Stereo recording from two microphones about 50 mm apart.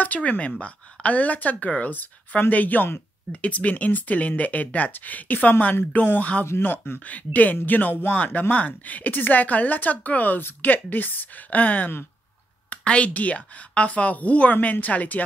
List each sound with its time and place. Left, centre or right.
0.0 s a woman's voice: left
7.1 s a woman's voice: left